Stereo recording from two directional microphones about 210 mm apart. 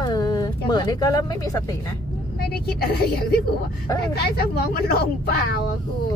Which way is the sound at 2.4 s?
50° left (ahead or behind).